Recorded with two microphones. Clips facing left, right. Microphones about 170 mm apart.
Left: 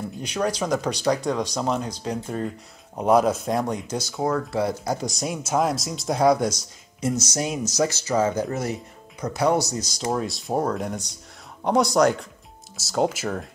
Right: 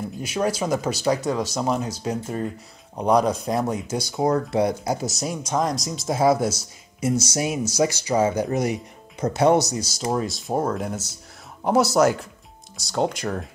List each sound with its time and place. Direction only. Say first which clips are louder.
0.2 s speech: right 1 dB; 5° right (ahead or behind)
9.8 s speech: right 1 dB; 5° right (ahead or behind)